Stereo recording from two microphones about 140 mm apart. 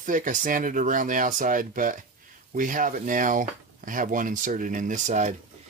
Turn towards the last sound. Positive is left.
turn(degrees=-60)  # may be behind; listen again after turning